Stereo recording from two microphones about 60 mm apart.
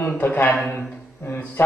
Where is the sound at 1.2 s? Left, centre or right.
Left.